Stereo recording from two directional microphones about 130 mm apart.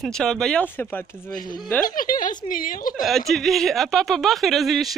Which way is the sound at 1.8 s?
90° left.